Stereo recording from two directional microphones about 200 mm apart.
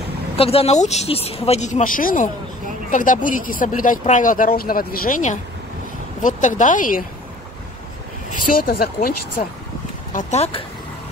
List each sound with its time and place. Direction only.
0.4 s speech: 30° left (ahead or behind)
8.3 s speech: 50° left (ahead or behind)
9.4 s speech: 40° left (ahead or behind)